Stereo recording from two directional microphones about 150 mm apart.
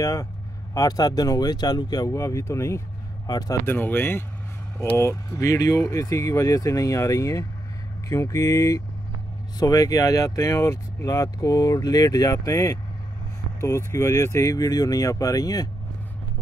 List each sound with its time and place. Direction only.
0.0 s speech: 20° left (ahead or behind)
3.6 s speech: 15° left (ahead or behind)